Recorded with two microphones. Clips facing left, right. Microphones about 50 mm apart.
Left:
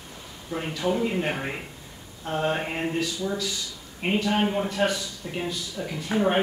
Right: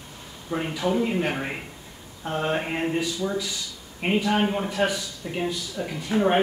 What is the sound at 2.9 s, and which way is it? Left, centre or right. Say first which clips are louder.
A man's voice: right 2 dB; centre.